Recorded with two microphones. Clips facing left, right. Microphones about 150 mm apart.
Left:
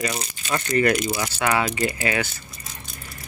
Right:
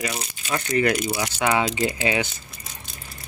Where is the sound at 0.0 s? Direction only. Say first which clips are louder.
Left 2 dB; 5° right (ahead or behind).